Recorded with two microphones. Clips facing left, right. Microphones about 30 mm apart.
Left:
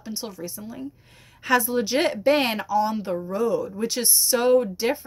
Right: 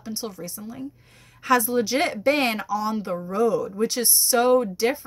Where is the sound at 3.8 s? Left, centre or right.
Left.